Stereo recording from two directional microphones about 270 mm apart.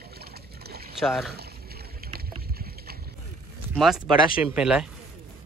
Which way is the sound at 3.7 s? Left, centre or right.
Centre.